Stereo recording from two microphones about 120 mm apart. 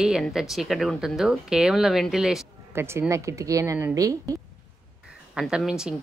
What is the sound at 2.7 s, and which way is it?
Speech, 20° right (ahead or behind).